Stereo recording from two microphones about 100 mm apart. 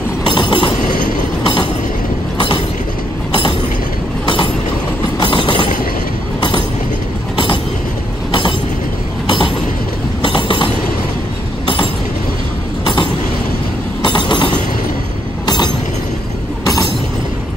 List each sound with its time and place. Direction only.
0.3 s train: 50° left (ahead or behind)
5.2 s train: 55° left (ahead or behind)
8.3 s train: 55° left (ahead or behind)
10.2 s train: 55° left (ahead or behind)
16.6 s train: 35° left (ahead or behind)